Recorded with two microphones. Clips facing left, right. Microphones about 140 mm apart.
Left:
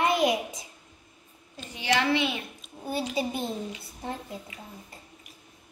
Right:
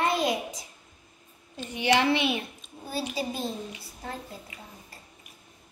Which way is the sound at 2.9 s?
20° left (ahead or behind).